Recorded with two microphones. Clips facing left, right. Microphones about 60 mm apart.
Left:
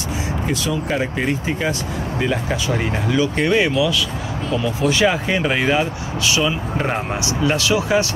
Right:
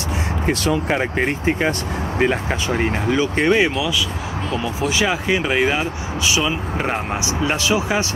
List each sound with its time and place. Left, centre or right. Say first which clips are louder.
0.5 s speech: right 4 dB; right
2.8 s speech: right 2 dB; right
4.8 s speech: left 2 dB; centre
7.4 s speech: left 2 dB; right